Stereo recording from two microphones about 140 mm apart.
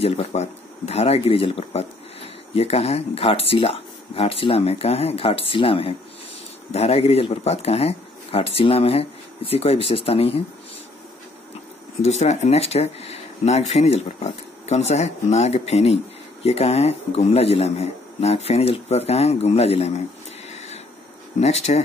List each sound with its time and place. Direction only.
0.0 s speech: 50° left (ahead or behind)
12.0 s speech: 50° left (ahead or behind)
20.4 s a sound: 50° left (ahead or behind)
21.4 s speech: 50° left (ahead or behind)